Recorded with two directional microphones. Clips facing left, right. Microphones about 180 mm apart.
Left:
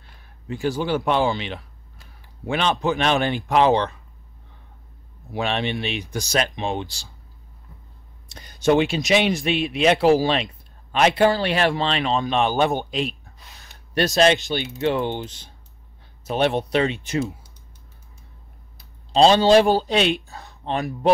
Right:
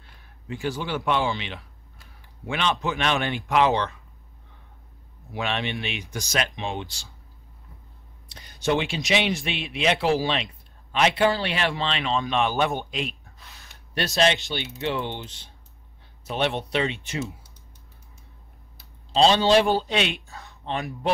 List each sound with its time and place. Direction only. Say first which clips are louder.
0.5 s speech: left 6 dB; 35° left (ahead or behind)
5.3 s speech: left 4 dB; 35° left (ahead or behind)
8.3 s speech: left 6 dB; 45° left (ahead or behind)
19.1 s speech: left 4 dB; 40° left (ahead or behind)